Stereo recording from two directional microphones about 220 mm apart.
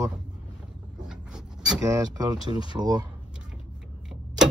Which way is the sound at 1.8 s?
15° right (ahead or behind).